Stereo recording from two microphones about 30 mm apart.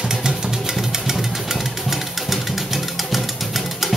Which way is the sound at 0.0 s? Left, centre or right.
Right.